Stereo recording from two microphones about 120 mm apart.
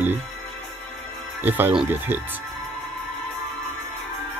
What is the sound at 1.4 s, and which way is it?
Speech, 15° right (ahead or behind).